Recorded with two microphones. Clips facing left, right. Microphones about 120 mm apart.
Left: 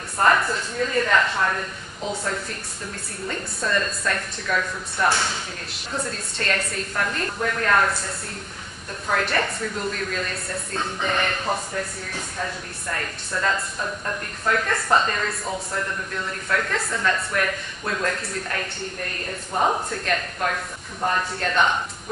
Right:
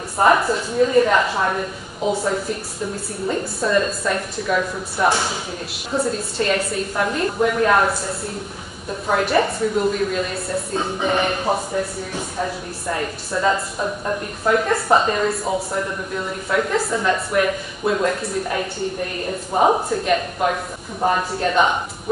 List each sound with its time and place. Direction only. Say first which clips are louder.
0.5 s a woman's voice: right 8 dB; 15° right (ahead or behind)
2.0 s a woman's voice: right 8 dB; 5° right (ahead or behind)
3.3 s a woman's voice: right 6 dB; 10° right (ahead or behind)
9.1 s a woman's voice: right 6 dB; 5° right (ahead or behind)
12.8 s a woman's voice: right 6 dB; 10° right (ahead or behind)